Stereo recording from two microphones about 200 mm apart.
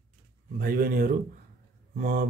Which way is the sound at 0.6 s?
50° right (ahead or behind).